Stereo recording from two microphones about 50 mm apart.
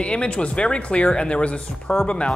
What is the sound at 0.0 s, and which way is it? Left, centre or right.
Speech, left.